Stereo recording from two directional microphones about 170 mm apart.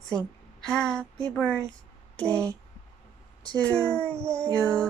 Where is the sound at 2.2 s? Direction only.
20° right (ahead or behind).